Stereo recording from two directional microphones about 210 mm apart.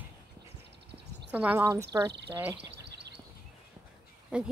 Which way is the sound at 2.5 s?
55° right (ahead or behind).